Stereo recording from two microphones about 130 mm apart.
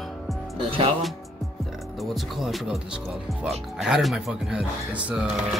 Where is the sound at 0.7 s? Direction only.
45° right (ahead or behind).